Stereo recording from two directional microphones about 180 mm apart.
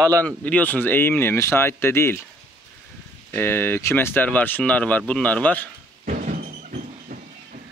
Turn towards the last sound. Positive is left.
turn(degrees=-45)  # may be behind; listen again after turning